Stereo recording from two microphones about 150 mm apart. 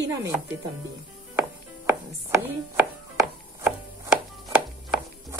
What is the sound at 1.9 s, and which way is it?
Chopping, 15° right (ahead or behind).